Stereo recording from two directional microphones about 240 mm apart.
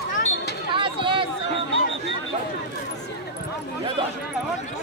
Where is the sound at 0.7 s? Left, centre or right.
Right.